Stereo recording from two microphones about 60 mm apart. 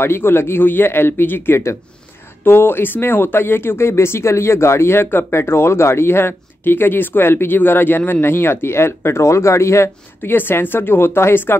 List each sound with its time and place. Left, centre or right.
0.0 s speech: left
10.3 s speech: left